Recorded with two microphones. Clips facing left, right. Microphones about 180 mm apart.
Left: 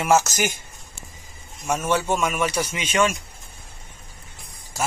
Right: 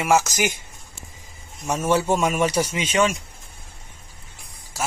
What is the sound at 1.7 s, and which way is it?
A man's voice, 35° right (ahead or behind).